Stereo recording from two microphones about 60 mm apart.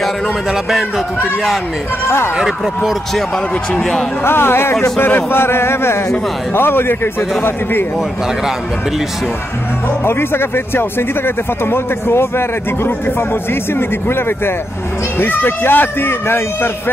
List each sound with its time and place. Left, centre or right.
0.5 s speech: centre
2.0 s speech: left
2.3 s speech: centre
3.7 s speech: centre
4.2 s speech: left
10.0 s speech: left